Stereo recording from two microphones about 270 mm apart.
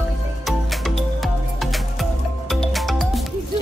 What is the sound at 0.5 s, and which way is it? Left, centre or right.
Music, centre.